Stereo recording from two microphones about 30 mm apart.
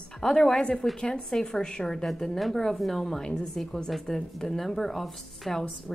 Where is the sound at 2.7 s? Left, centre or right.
Centre.